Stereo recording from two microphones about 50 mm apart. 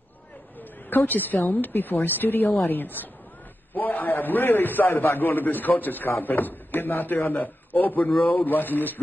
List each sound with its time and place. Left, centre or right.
0.6 s a man's voice: left